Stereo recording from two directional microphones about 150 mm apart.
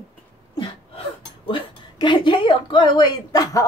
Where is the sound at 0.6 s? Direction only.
40° left (ahead or behind).